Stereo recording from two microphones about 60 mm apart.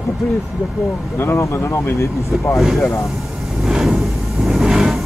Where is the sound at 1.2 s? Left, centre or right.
Left.